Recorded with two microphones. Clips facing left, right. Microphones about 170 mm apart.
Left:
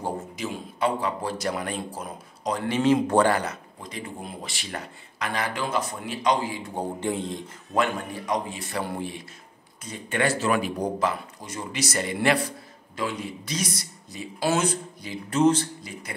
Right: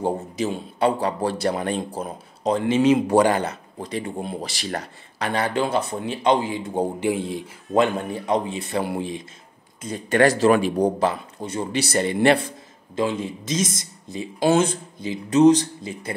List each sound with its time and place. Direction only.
0.4 s a man's voice: 35° right (ahead or behind); by 3.3 s 15° right (ahead or behind)
3.9 s a man's voice: 30° right (ahead or behind); by 7.4 s 5° right (ahead or behind)
7.7 s a man's voice: 25° right (ahead or behind)
9.8 s a man's voice: 40° right (ahead or behind); by 15.9 s 15° right (ahead or behind)